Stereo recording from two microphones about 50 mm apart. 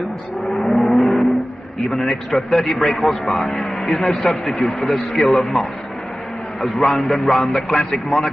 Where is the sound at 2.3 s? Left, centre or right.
Centre; by 3.8 s left.